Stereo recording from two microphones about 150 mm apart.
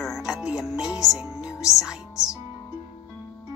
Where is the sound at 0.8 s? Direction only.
20° left (ahead or behind).